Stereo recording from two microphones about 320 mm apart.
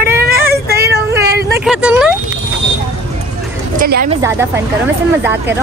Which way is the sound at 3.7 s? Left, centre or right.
Right.